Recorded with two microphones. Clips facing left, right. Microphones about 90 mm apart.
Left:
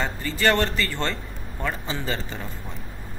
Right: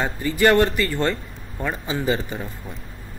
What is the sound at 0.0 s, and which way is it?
Speech, 15° right (ahead or behind).